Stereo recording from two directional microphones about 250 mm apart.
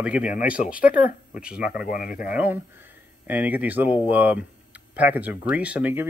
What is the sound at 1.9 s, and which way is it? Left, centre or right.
Speech, left.